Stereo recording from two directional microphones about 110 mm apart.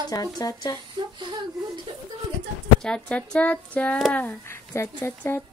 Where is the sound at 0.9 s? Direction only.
45° right (ahead or behind).